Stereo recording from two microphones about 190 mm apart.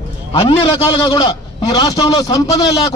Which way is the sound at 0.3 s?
30° left (ahead or behind).